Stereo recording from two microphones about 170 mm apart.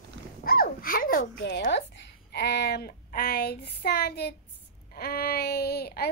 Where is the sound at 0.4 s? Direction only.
60° left (ahead or behind); by 1.6 s 80° left.